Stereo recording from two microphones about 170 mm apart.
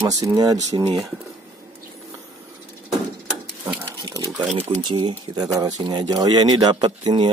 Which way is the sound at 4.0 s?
20° right (ahead or behind).